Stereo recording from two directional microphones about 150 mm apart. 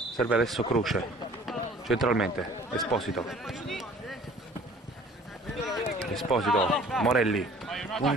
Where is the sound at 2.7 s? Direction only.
Centre (ahead or behind).